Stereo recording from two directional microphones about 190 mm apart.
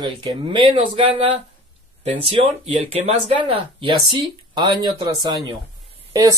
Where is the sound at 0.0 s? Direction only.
25° right (ahead or behind).